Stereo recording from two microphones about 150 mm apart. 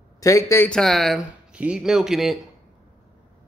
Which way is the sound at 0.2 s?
20° left (ahead or behind).